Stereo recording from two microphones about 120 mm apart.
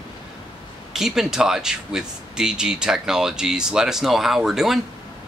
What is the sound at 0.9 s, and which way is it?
Speech, 5° right (ahead or behind).